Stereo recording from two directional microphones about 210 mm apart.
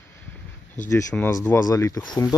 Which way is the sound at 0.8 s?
10° left (ahead or behind).